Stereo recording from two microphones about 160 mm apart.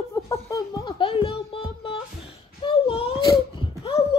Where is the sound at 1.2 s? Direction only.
35° left (ahead or behind).